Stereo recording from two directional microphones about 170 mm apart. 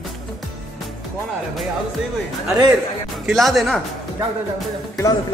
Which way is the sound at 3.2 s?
Centre (ahead or behind).